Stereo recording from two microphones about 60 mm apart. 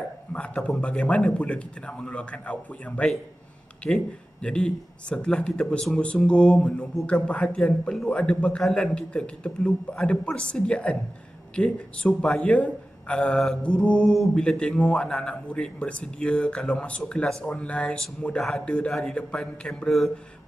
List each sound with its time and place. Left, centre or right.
0.6 s a man's voice: centre
0.8 s a man's voice: left